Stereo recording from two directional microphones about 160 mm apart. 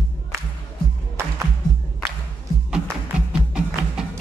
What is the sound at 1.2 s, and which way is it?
Music, 15° right (ahead or behind).